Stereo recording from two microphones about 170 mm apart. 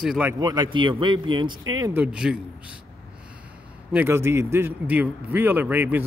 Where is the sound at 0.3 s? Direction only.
25° right (ahead or behind).